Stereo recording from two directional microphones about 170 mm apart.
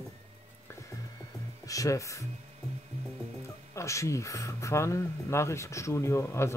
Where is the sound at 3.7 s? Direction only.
20° left (ahead or behind).